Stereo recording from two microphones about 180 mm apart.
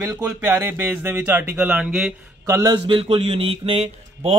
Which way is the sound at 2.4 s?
20° right (ahead or behind).